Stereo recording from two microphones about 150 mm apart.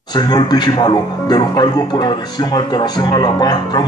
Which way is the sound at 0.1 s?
30° left (ahead or behind).